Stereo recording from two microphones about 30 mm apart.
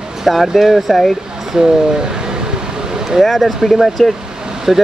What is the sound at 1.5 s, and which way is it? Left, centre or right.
Speech, right.